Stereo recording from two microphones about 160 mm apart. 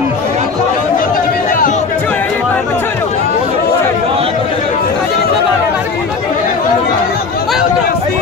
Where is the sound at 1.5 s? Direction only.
55° left (ahead or behind).